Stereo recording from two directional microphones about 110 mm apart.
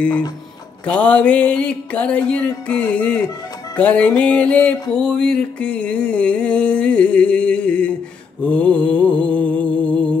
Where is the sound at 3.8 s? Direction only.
10° left (ahead or behind).